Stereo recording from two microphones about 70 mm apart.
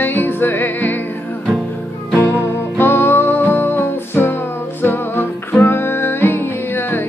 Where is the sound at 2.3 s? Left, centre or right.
Left.